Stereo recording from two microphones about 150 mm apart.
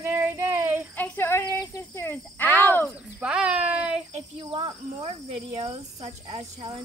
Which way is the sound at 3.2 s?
5° right (ahead or behind).